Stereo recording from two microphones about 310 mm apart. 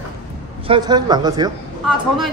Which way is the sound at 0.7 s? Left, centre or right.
Centre.